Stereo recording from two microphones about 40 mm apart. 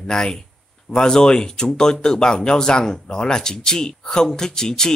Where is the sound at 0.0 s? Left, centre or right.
Centre.